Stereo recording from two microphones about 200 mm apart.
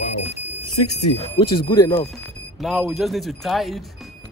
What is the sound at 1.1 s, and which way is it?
Speech, 30° left (ahead or behind).